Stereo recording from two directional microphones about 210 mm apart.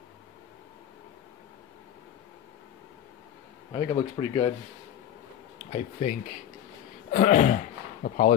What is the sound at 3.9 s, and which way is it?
Speech, 25° left (ahead or behind).